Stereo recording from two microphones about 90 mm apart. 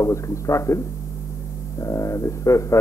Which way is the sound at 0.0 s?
35° left (ahead or behind).